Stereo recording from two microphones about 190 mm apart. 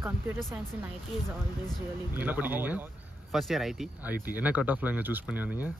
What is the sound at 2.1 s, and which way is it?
Speech, 10° right (ahead or behind).